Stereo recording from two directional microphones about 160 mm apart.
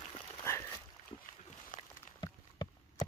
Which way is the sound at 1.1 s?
30° left (ahead or behind).